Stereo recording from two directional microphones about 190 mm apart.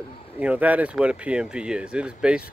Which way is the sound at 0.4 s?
5° right (ahead or behind).